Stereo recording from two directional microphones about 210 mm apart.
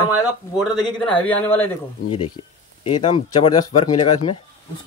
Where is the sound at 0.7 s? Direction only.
5° left (ahead or behind).